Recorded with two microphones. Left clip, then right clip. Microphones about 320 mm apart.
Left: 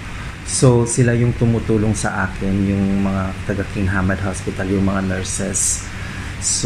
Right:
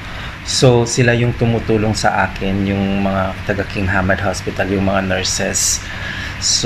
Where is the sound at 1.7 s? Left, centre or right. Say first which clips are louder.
Right 8 dB; right.